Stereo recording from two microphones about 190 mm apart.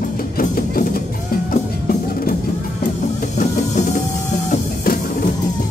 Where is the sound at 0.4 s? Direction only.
50° left (ahead or behind).